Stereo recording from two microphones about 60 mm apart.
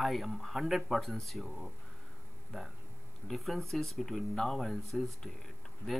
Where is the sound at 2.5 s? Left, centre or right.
Centre.